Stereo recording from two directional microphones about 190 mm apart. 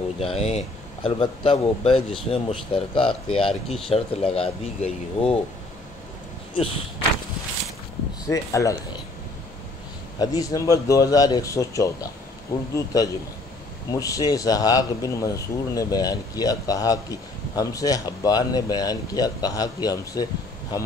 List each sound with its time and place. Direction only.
0.2 s speech: 30° left (ahead or behind)
6.5 s speech: 30° left (ahead or behind)
8.3 s a man's voice: 15° left (ahead or behind)
10.1 s a man's voice: 20° left (ahead or behind)